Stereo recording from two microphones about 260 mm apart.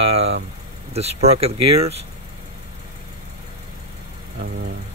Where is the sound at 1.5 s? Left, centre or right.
Right.